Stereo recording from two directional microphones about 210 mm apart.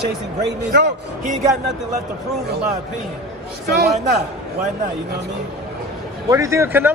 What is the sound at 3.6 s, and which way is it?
Speech, 50° right (ahead or behind).